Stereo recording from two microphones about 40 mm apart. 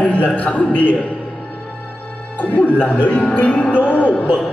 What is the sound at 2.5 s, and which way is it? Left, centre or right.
Speech, left.